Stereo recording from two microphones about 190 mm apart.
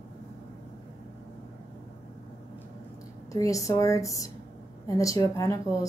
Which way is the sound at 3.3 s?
15° left (ahead or behind).